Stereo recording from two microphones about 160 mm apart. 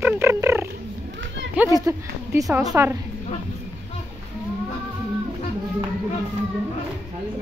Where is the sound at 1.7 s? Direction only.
20° right (ahead or behind).